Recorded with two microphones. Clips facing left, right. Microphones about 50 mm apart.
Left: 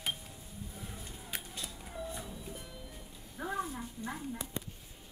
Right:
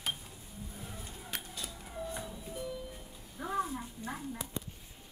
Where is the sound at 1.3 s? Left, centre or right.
Centre.